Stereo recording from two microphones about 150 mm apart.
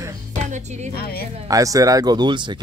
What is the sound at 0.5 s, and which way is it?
Speech, 50° right (ahead or behind).